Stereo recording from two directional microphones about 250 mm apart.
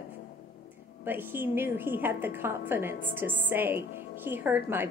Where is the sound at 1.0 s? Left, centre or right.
Centre.